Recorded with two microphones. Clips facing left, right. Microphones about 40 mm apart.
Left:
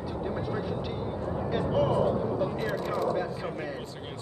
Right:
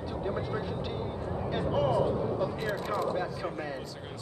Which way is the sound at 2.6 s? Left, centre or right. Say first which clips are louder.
Left 2 dB; centre.